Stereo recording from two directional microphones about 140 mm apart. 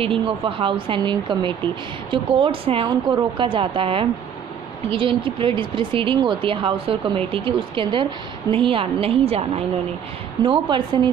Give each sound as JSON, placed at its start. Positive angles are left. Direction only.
{"t": 0.0, "sound": "speech", "side_deg": -40}
{"t": 10.4, "sound": "speech", "side_deg": -35}